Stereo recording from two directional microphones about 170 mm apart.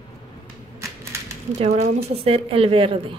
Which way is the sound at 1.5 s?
35° right (ahead or behind).